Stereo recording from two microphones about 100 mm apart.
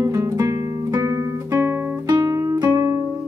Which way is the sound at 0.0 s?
30° right (ahead or behind).